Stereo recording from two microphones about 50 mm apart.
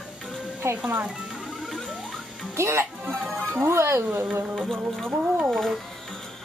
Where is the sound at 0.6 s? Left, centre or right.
Right.